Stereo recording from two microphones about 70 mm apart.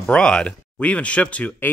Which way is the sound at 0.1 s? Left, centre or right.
Centre.